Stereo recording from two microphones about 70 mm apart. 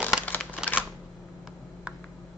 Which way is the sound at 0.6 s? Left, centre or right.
Centre.